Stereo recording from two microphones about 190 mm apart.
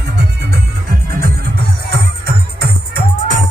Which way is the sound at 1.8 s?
60° right (ahead or behind).